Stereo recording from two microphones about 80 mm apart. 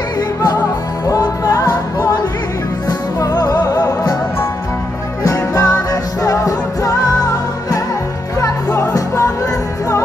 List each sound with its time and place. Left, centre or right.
1.0 s music: left
5.2 s music: left
8.9 s music: left